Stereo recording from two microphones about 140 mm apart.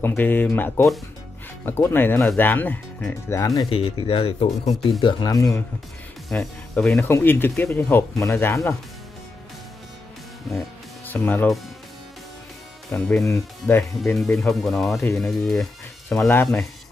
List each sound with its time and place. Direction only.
0.0 s speech: 15° left (ahead or behind)
3.7 s speech: 40° left (ahead or behind)
5.0 s speech: 25° left (ahead or behind)
6.2 s speech: 5° left (ahead or behind)
7.1 s speech: 15° left (ahead or behind)
11.1 s speech: 15° left (ahead or behind)
12.9 s speech: 5° left (ahead or behind)
13.2 s speech: 20° left (ahead or behind)
14.1 s speech: centre (ahead or behind)